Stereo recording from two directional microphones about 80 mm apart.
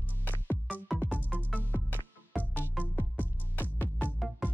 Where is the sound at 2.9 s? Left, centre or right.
Left.